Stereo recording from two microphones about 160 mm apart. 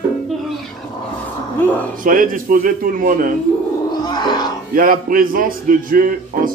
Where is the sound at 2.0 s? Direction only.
60° right (ahead or behind).